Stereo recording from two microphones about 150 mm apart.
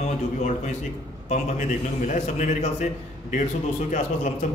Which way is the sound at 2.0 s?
55° left (ahead or behind).